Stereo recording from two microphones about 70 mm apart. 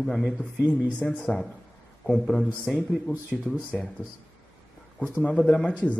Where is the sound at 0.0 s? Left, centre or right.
Centre.